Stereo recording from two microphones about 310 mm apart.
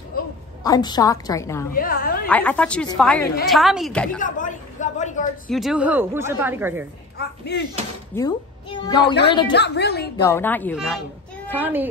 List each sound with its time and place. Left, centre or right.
0.7 s a woman's voice: centre
1.7 s a woman's voice: left
2.2 s a woman's voice: centre
4.2 s a sound: left
5.5 s a woman's voice: centre
7.2 s a woman's voice: left
8.1 s speech: centre
9.0 s a woman's voice: left
10.2 s a woman's voice: centre